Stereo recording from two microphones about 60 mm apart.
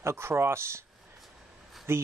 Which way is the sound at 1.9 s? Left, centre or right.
Right.